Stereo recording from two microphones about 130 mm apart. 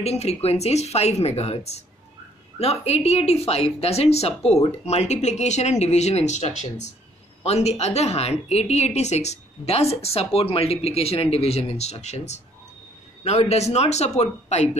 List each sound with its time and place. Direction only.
0.0 s speech: 55° left (ahead or behind)